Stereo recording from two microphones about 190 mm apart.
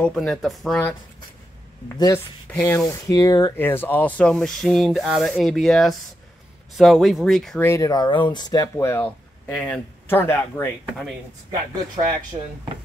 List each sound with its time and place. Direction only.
0.0 s speech: 5° left (ahead or behind)
1.9 s speech: 15° left (ahead or behind)
12.3 s speech: 30° right (ahead or behind)